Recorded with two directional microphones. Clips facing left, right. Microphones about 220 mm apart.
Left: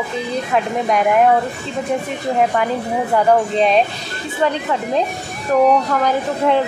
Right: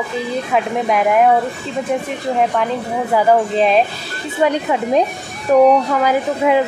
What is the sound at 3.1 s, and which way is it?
Speech, 5° right (ahead or behind).